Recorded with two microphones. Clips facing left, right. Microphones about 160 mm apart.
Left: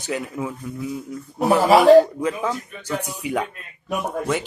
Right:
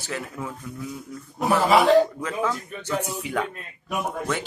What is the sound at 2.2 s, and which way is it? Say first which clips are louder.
Speech: left 3 dB; 10° left (ahead or behind).